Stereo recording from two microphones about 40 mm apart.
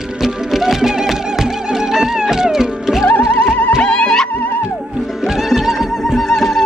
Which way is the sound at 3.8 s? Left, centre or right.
Left.